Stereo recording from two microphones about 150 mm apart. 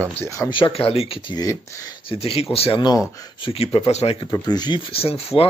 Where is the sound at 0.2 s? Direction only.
20° left (ahead or behind).